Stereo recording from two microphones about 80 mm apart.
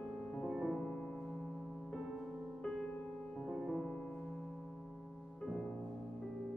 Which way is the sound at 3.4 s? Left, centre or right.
Centre.